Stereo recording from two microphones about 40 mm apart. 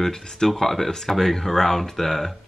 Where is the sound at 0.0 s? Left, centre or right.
Centre.